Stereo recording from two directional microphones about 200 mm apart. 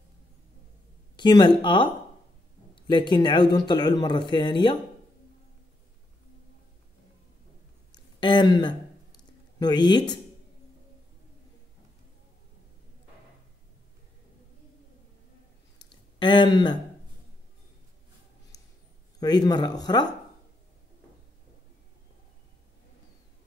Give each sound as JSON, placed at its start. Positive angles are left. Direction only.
{"t": 1.1, "sound": "speech", "side_deg": 20}
{"t": 7.9, "sound": "a sound", "side_deg": 25}
{"t": 9.6, "sound": "speech", "side_deg": 20}
{"t": 16.2, "sound": "speech", "side_deg": 25}
{"t": 19.1, "sound": "speech", "side_deg": 20}